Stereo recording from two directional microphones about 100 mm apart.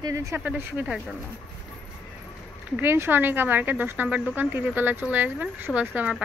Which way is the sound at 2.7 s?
25° right (ahead or behind).